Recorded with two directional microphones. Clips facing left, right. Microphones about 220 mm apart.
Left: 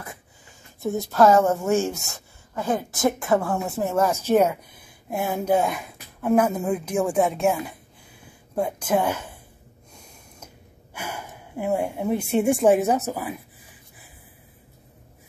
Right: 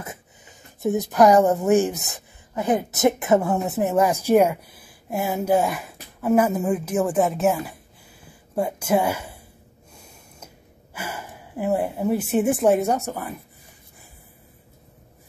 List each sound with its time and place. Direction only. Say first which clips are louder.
0.0 s speech: right 3 dB; 20° right (ahead or behind)
8.2 s a sound: right 1 dB; 5° right (ahead or behind)
9.9 s gasp: right 1 dB; 5° right (ahead or behind)